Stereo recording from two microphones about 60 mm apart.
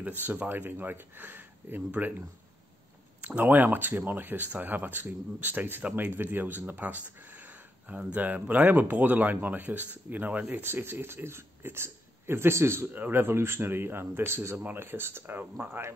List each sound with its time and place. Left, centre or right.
0.0 s speech: right
12.9 s speech: right